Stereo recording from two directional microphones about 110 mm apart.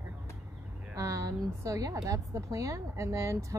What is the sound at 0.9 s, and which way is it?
A woman's voice, 30° right (ahead or behind).